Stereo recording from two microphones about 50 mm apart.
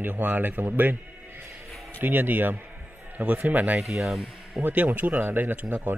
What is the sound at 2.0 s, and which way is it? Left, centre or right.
A man's voice, right.